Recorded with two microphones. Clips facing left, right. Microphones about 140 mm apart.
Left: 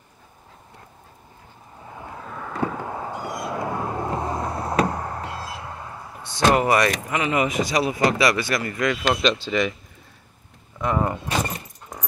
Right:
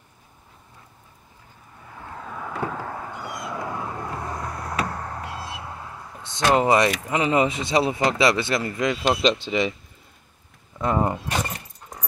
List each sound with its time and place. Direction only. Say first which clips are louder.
2.1 s vehicle: left 2 dB; centre (ahead or behind)
3.1 s vehicle: left 4 dB; 30° left (ahead or behind)
5.0 s a sound: left 2 dB; 5° left (ahead or behind)
6.3 s speech: even; 20° right (ahead or behind)
10.8 s speech: right 1 dB; 30° right (ahead or behind)